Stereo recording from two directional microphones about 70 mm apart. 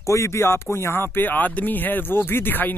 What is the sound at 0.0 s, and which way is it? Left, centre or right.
Speech, left.